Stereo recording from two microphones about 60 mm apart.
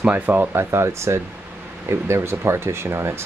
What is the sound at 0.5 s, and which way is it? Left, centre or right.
Speech, right.